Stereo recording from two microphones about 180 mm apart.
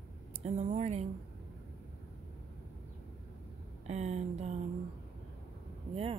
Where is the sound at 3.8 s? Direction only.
40° right (ahead or behind).